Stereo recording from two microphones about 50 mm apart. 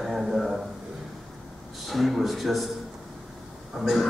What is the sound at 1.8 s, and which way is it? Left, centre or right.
Speech, centre.